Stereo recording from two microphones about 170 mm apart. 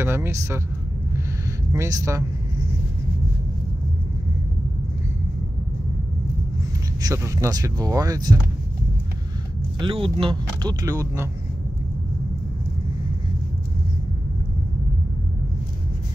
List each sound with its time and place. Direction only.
0.0 s speech: 15° right (ahead or behind)
1.7 s speech: 20° right (ahead or behind)
7.0 s speech: 20° right (ahead or behind)
9.8 s speech: 30° right (ahead or behind)